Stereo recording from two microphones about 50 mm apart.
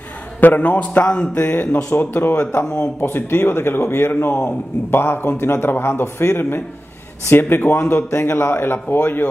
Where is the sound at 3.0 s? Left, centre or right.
Left.